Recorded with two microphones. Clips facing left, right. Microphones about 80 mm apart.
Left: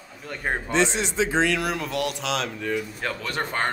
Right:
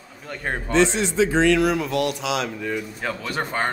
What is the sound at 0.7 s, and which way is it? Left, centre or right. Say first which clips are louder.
Speech: right 5 dB; left.